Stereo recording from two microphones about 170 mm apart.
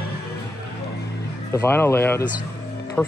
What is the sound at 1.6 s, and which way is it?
A man's voice, 15° left (ahead or behind).